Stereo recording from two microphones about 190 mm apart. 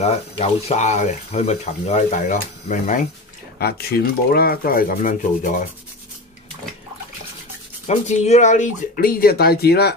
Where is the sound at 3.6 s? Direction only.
55° left (ahead or behind).